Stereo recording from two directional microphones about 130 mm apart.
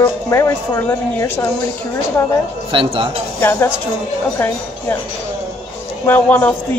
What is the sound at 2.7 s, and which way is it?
Speech, 40° right (ahead or behind).